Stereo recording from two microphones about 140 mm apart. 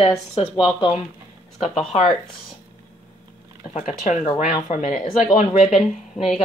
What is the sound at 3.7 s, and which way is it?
Speech, 50° left (ahead or behind).